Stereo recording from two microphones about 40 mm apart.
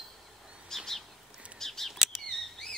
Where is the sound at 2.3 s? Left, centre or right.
Centre.